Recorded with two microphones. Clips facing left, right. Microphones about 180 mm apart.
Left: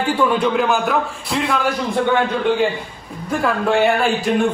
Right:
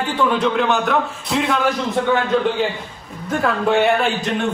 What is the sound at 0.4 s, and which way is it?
A man's voice, centre (ahead or behind).